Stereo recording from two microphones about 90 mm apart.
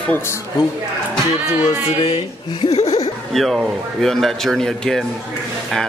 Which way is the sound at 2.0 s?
70° left (ahead or behind).